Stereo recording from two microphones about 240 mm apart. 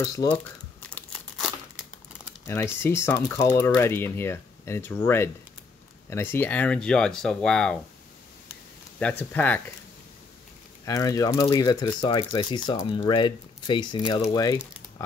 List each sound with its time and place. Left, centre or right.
0.0 s speech: centre
0.9 s crumpling: centre
2.4 s speech: centre
9.2 s speech: centre
10.9 s speech: centre